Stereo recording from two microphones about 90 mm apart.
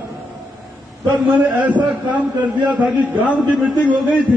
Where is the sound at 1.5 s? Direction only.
15° right (ahead or behind).